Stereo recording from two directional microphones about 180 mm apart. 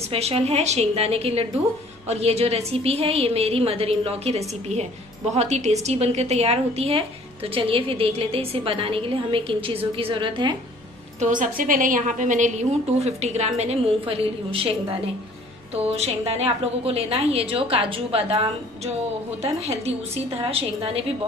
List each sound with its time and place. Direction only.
0.1 s a woman's voice: 35° right (ahead or behind)
11.1 s a woman's voice: 45° right (ahead or behind)
19.4 s a woman's voice: 35° right (ahead or behind)